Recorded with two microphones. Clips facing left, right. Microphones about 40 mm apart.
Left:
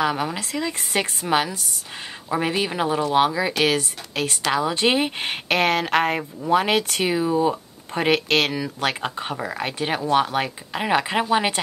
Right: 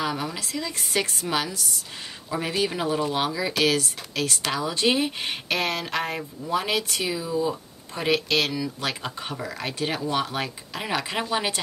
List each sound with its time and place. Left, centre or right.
0.0 s speech: left